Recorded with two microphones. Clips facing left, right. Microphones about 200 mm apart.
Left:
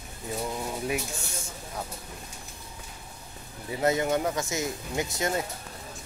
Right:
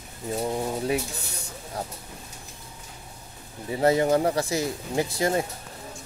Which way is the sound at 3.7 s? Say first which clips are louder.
Right 5 dB; 30° right (ahead or behind).